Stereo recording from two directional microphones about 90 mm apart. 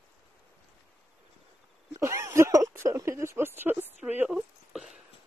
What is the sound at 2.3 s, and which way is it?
Speech, 35° right (ahead or behind).